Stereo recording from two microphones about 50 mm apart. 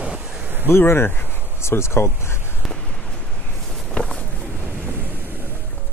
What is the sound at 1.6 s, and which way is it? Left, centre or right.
Speech, left.